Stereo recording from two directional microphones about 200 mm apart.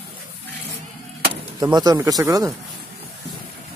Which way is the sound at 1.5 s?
20° right (ahead or behind).